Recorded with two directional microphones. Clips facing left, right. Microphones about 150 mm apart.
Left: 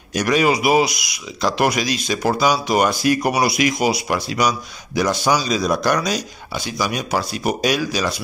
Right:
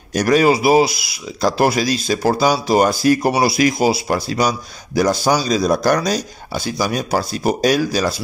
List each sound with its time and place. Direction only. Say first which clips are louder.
0.1 s speech: right 4 dB; 35° right (ahead or behind)